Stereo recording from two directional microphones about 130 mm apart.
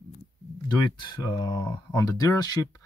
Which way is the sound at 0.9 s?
35° left (ahead or behind).